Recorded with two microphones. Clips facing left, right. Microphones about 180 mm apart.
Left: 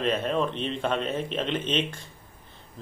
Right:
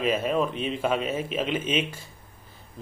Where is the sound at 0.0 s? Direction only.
5° right (ahead or behind).